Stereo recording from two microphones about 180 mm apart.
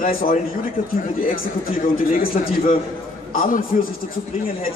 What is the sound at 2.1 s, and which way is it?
A man's voice, 50° left (ahead or behind).